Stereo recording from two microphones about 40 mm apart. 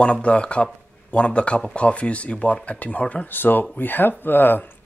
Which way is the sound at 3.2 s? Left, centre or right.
Left.